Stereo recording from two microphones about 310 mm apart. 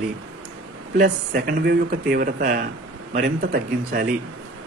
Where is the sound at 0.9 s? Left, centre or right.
Right.